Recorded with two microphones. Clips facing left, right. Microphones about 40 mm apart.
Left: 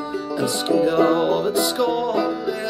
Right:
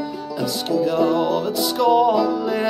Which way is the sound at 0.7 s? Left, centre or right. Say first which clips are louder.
Left 1 dB; left.